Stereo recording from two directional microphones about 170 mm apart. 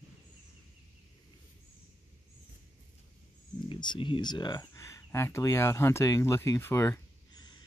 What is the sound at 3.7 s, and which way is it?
Speech, 30° left (ahead or behind).